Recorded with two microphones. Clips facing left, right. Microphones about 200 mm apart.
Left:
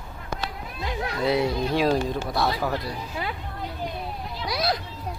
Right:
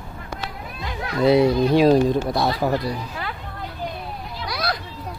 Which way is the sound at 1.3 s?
30° right (ahead or behind).